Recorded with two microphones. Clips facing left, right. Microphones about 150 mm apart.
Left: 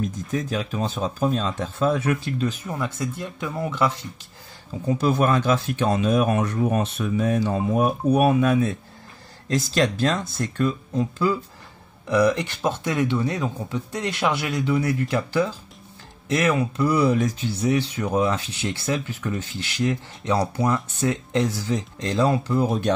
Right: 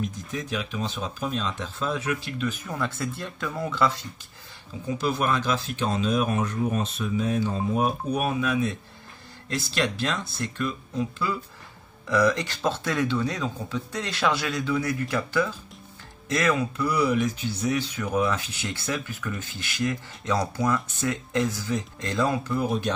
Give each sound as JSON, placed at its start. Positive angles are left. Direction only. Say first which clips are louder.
{"t": 0.3, "sound": "speech", "louder": "left 5 dB", "side_deg": 40}
{"t": 2.7, "sound": "speech", "louder": "left 2 dB", "side_deg": 15}
{"t": 4.8, "sound": "speech", "louder": "left 5 dB", "side_deg": 50}
{"t": 9.5, "sound": "speech", "louder": "left 6 dB", "side_deg": 40}
{"t": 12.1, "sound": "speech", "louder": "left 3 dB", "side_deg": 15}